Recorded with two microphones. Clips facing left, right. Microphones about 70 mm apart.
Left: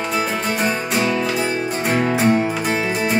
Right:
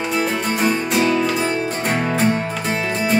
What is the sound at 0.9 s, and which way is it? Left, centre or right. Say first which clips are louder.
Music: right 2 dB; centre.